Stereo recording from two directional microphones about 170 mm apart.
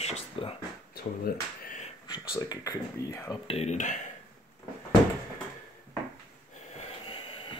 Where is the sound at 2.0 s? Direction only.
25° left (ahead or behind).